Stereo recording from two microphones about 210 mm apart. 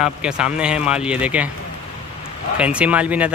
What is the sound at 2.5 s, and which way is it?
Speech, 5° right (ahead or behind).